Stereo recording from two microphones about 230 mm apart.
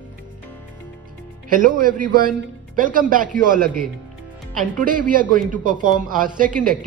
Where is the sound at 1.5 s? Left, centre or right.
Right.